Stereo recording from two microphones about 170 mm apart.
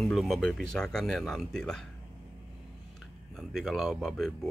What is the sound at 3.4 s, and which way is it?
Speech, centre (ahead or behind).